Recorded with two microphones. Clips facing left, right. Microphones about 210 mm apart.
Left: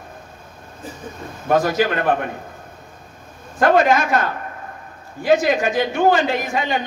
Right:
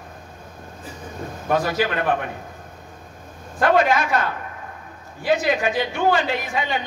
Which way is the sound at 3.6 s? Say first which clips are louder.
Left 3 dB; 45° left (ahead or behind).